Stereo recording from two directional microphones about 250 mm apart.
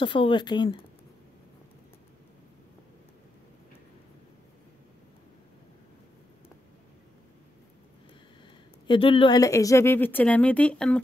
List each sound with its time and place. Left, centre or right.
0.0 s speech: centre
8.8 s speech: centre